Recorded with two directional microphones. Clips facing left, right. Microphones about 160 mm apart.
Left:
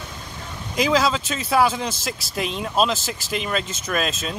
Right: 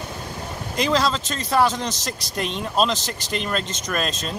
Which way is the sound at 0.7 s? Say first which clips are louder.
Left 1 dB; 5° left (ahead or behind).